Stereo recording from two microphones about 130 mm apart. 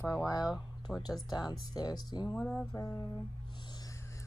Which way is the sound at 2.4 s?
5° left (ahead or behind).